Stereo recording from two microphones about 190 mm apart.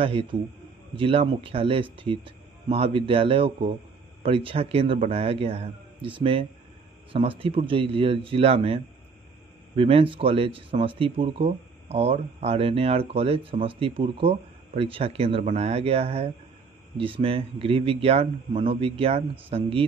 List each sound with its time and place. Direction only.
0.0 s speech: 30° right (ahead or behind)